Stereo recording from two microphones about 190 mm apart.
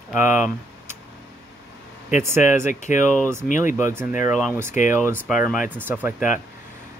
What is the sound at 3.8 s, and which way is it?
Speech, 15° right (ahead or behind).